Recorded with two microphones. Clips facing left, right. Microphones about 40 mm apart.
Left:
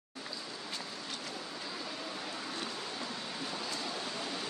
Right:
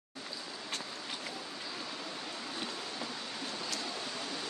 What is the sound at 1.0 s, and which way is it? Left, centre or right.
Vehicle, centre.